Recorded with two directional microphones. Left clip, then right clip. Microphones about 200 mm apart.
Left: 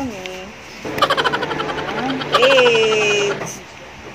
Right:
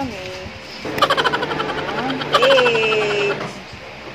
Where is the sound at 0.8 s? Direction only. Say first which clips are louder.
Even; centre (ahead or behind).